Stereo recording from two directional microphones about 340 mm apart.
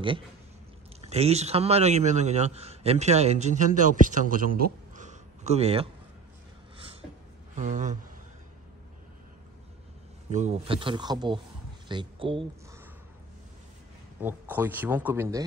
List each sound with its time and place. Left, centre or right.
1.0 s a man's voice: centre
7.5 s a man's voice: right
10.3 s speech: centre
14.2 s speech: centre